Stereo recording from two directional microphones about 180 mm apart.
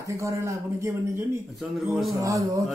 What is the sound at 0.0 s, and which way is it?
Speech, 15° right (ahead or behind).